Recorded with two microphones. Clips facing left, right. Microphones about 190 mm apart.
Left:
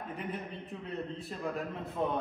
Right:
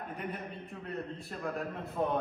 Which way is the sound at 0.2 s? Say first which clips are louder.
Left 1 dB; centre (ahead or behind).